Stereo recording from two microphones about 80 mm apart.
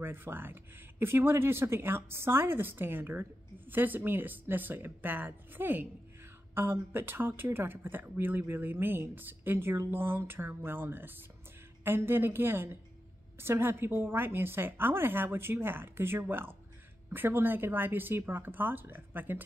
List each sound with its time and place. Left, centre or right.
0.0 s speech: right